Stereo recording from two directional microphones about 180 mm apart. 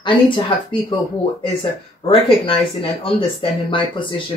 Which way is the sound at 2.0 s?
30° left (ahead or behind).